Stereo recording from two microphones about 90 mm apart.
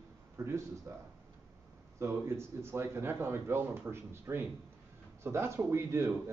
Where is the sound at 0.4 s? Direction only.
25° right (ahead or behind).